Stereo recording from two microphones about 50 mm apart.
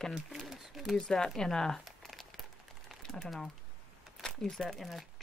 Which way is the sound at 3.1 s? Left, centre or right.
Centre.